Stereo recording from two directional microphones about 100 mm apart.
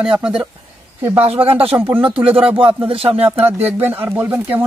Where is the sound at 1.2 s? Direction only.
70° right (ahead or behind).